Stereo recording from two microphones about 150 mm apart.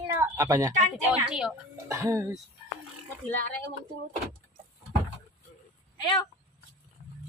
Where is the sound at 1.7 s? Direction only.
20° right (ahead or behind).